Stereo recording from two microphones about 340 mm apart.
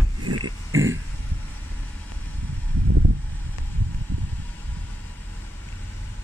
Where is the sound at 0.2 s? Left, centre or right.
Right.